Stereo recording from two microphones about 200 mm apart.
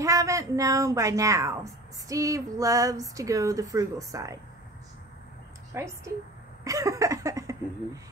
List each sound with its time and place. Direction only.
0.0 s speech: 15° right (ahead or behind)
5.7 s speech: 15° right (ahead or behind)